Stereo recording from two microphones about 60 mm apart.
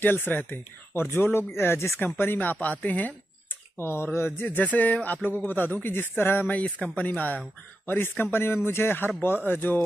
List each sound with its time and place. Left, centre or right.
0.0 s speech: left
3.7 s speech: left
4.5 s speech: left
6.6 s speech: centre
7.1 s speech: left